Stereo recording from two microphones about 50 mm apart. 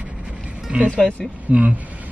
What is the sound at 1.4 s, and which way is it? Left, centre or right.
Speech, right.